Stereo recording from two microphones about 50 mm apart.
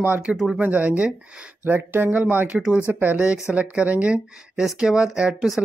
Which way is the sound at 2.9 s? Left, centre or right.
Right.